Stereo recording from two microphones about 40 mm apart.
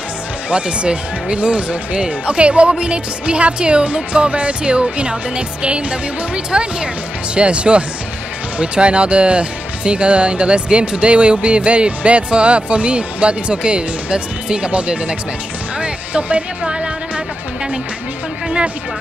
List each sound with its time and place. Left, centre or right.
0.5 s speech: right
15.8 s music: right